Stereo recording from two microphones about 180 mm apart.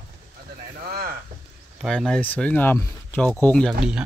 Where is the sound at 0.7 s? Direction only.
55° right (ahead or behind).